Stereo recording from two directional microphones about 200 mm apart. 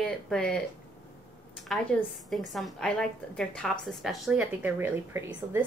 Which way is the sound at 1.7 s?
Centre (ahead or behind).